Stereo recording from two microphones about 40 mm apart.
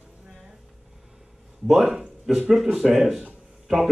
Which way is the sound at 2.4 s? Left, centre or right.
Centre.